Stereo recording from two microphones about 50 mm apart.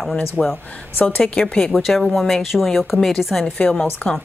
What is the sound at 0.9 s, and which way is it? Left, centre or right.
Speech, left.